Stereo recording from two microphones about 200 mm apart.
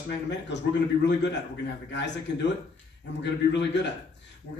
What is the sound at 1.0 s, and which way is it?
A man's voice, 60° left (ahead or behind).